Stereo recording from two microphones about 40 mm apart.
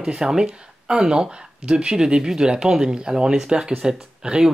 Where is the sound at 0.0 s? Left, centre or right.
Centre.